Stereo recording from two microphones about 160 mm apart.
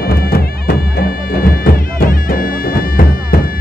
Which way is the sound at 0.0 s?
70° left (ahead or behind).